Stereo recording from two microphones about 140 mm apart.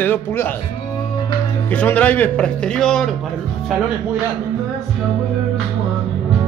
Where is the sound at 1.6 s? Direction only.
10° left (ahead or behind).